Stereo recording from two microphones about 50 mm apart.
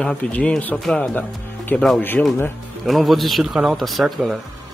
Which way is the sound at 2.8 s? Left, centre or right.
Centre.